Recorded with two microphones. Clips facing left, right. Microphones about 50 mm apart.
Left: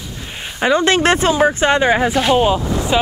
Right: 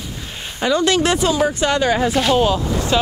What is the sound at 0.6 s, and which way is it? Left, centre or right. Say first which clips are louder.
Speech: left 2 dB; left.